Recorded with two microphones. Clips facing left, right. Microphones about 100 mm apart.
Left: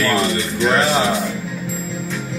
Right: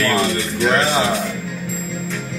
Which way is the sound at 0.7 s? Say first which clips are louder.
Left 1 dB; centre (ahead or behind).